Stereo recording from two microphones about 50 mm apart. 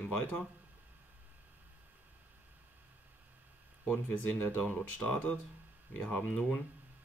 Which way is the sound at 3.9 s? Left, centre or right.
Left.